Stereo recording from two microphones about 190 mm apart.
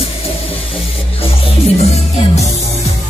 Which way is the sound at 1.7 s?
35° left (ahead or behind).